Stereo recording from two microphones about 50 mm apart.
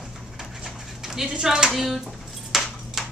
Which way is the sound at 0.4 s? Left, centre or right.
Centre.